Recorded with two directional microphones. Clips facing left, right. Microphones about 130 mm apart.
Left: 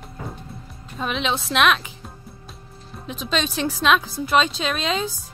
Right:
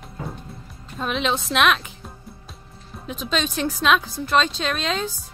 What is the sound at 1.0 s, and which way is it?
Speech, centre (ahead or behind).